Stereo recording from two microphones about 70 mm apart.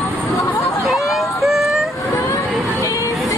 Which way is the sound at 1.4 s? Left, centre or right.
Centre.